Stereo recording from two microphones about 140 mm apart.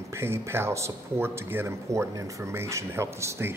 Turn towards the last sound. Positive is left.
turn(degrees=-20)  # may be behind; listen again after turning